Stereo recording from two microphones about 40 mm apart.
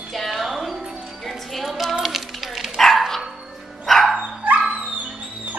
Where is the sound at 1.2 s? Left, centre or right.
Centre.